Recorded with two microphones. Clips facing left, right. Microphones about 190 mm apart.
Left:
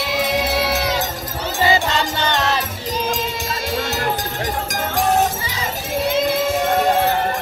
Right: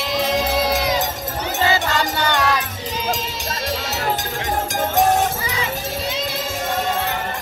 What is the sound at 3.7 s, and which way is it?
Music, centre (ahead or behind).